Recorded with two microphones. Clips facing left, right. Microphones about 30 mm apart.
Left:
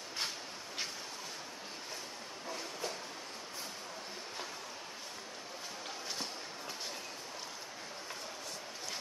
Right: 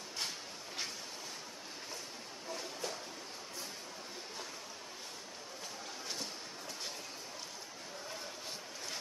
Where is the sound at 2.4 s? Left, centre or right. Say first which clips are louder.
Left 1 dB; centre.